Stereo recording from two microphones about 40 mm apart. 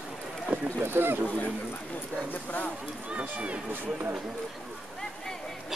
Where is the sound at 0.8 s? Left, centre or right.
Right.